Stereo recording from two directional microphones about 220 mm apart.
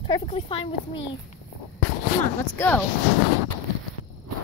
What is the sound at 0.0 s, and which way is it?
Speech, 20° left (ahead or behind).